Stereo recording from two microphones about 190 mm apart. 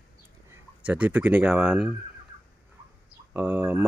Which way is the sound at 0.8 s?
5° right (ahead or behind).